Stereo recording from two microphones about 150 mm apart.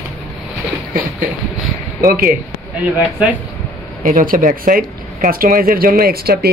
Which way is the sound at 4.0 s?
60° right (ahead or behind).